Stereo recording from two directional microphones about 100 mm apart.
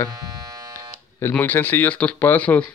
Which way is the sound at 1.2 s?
20° left (ahead or behind).